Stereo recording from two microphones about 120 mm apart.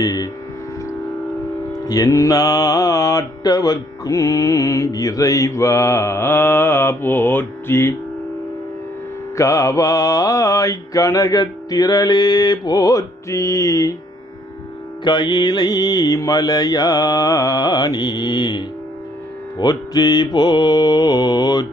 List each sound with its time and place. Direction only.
0.0 s mantra: 30° left (ahead or behind)
1.7 s mantra: 30° left (ahead or behind)
9.4 s mantra: 25° left (ahead or behind)
15.0 s mantra: 40° left (ahead or behind)